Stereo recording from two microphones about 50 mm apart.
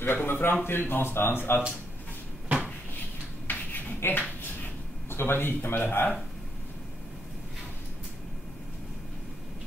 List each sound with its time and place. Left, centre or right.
0.0 s speech: left
3.4 s a sound: left
5.1 s speech: left